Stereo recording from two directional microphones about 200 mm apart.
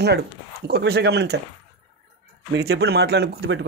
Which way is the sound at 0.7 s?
50° right (ahead or behind).